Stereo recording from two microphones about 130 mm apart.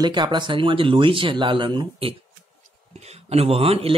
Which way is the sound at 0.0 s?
35° right (ahead or behind).